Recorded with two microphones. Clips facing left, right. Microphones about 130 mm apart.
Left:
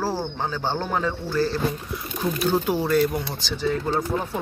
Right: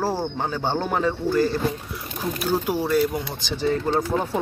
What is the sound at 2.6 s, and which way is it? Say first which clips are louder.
Speech: even; 10° right (ahead or behind).